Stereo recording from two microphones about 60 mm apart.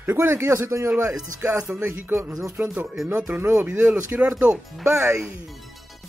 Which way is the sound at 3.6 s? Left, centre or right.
Right.